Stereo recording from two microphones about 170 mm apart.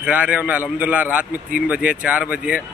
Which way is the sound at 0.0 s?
5° right (ahead or behind).